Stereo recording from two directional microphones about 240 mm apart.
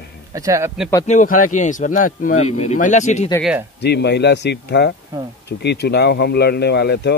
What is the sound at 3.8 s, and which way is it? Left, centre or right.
Speech, left.